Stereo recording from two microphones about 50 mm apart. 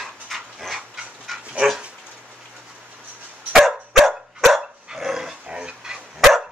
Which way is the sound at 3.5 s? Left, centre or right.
Centre.